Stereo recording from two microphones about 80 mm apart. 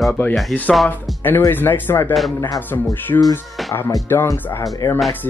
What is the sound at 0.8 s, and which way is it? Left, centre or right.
Speech, left.